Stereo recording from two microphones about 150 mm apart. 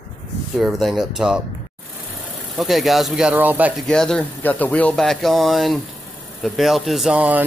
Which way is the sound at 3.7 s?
5° left (ahead or behind).